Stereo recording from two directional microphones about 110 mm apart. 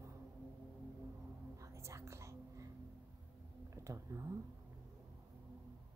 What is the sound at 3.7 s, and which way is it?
Speech, 25° right (ahead or behind).